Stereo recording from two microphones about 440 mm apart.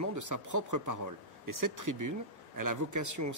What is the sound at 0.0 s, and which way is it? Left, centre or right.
Speech, right.